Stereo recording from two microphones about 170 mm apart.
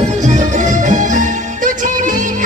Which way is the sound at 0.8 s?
50° right (ahead or behind).